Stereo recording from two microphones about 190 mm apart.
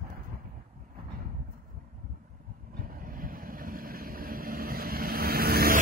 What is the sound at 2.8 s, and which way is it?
Vehicle, 50° right (ahead or behind).